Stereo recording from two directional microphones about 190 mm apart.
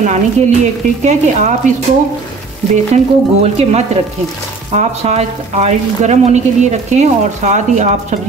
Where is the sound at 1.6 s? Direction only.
40° right (ahead or behind).